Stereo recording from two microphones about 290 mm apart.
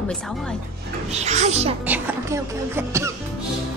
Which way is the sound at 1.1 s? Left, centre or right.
Right.